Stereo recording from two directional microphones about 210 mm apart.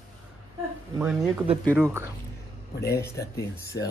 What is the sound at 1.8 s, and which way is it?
Speech, 10° right (ahead or behind).